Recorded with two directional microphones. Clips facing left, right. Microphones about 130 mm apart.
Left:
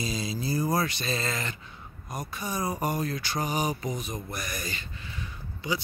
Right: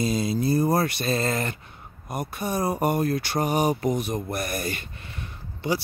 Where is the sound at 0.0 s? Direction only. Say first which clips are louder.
Right 8 dB; 55° right (ahead or behind).